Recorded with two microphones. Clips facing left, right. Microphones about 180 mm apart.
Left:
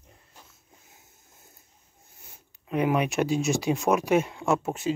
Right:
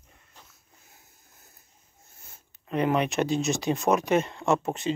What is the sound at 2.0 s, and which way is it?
Speech, 15° left (ahead or behind).